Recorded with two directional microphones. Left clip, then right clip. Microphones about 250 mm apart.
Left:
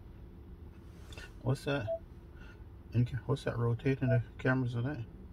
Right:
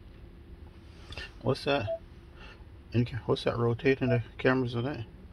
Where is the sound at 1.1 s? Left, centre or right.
Right.